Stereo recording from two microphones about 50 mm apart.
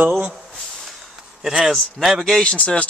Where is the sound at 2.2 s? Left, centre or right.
Centre.